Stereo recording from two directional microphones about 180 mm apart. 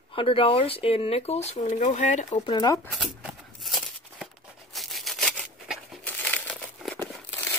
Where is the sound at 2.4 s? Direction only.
25° left (ahead or behind).